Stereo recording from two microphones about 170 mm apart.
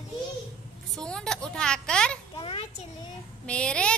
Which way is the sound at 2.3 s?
30° left (ahead or behind).